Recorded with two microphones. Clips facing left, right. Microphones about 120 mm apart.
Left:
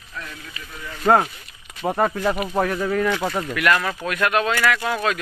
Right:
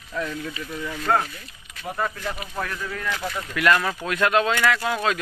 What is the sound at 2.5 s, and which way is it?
Speech, 50° left (ahead or behind).